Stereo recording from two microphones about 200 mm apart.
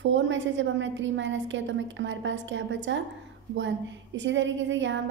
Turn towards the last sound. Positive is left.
turn(degrees=-65)  # may be behind; listen again after turning